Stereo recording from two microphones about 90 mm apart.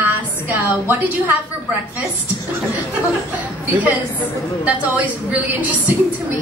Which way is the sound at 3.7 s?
20° right (ahead or behind).